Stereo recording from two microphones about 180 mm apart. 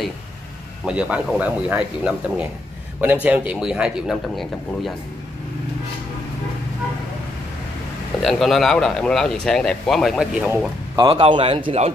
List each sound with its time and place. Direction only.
0.8 s speech: 5° right (ahead or behind)
8.2 s speech: centre (ahead or behind)
11.0 s a man's voice: 30° right (ahead or behind)